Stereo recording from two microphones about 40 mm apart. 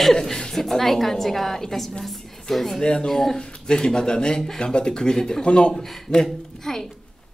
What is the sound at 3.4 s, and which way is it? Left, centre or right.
Speech, left.